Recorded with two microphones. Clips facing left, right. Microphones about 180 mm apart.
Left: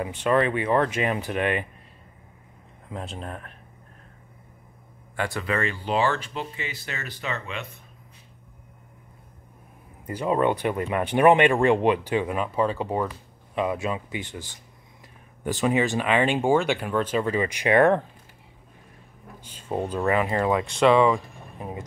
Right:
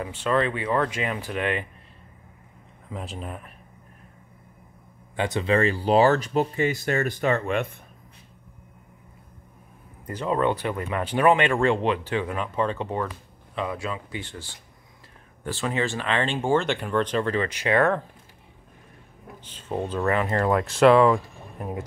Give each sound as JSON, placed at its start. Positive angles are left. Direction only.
{"t": 0.0, "sound": "speech", "side_deg": 15}
{"t": 2.9, "sound": "speech", "side_deg": 0}
{"t": 5.1, "sound": "speech", "side_deg": -20}
{"t": 10.0, "sound": "speech", "side_deg": 15}
{"t": 19.4, "sound": "speech", "side_deg": 10}
{"t": 20.5, "sound": "speech", "side_deg": -5}